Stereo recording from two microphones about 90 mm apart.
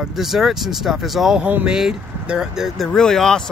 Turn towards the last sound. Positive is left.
turn(degrees=5)  # may be behind; listen again after turning